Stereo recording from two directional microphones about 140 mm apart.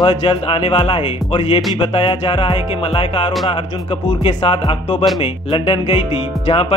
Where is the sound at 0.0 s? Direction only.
40° left (ahead or behind).